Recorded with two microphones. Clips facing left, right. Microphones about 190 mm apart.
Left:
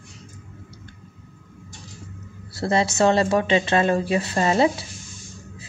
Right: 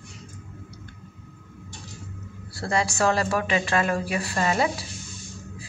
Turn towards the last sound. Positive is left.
turn(degrees=25)  # may be behind; listen again after turning